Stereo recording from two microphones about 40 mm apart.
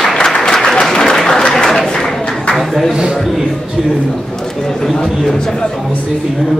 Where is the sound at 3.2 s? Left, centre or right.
Centre.